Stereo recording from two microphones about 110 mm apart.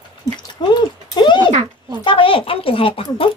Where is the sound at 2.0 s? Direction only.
55° left (ahead or behind).